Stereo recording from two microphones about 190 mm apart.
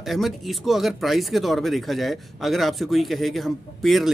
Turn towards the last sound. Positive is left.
turn(degrees=0)  # may be behind; listen again after turning